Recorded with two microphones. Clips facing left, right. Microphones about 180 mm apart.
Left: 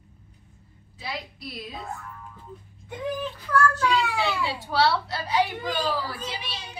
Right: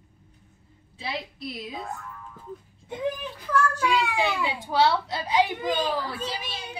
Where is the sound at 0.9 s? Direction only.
25° right (ahead or behind).